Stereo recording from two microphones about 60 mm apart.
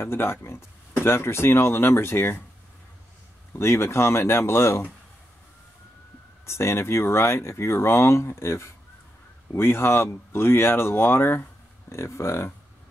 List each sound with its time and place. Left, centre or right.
0.0 s speech: left
3.5 s speech: left
6.4 s speech: left